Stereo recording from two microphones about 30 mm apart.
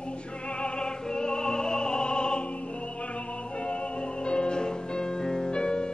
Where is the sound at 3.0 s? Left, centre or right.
Left.